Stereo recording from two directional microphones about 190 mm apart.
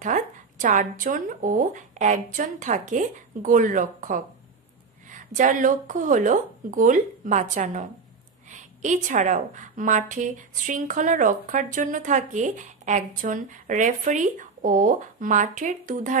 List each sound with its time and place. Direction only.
0.0 s a woman's voice: 45° right (ahead or behind)